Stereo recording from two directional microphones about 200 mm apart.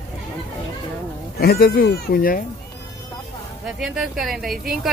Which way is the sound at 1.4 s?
50° left (ahead or behind).